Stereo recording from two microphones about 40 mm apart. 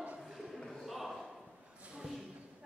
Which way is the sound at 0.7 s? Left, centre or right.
Centre.